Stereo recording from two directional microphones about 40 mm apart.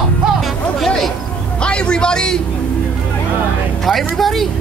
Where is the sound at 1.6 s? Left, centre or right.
Left.